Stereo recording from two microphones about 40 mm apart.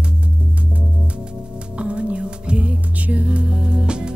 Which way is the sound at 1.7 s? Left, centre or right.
Right.